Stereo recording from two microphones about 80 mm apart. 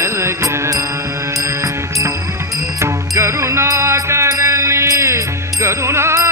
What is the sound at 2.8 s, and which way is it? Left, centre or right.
Music, right.